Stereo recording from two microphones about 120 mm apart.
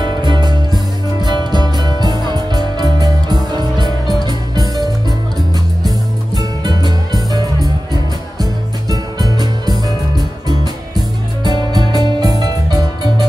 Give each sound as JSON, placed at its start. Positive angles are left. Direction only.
{"t": 0.0, "sound": "music", "side_deg": -40}
{"t": 6.3, "sound": "music", "side_deg": -35}